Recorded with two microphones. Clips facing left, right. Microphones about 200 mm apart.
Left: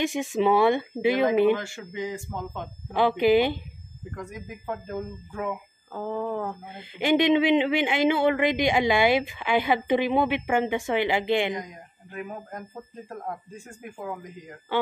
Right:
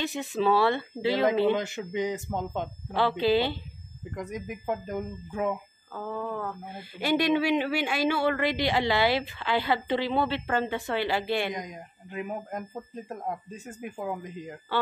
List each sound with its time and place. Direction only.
0.0 s speech: 15° left (ahead or behind)
1.5 s speech: 20° right (ahead or behind)
2.9 s speech: 15° left (ahead or behind)
4.1 s speech: 20° right (ahead or behind)
5.9 s speech: 20° left (ahead or behind)
11.5 s speech: 20° right (ahead or behind)